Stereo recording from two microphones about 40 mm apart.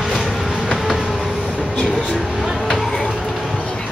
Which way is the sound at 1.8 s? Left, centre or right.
Centre.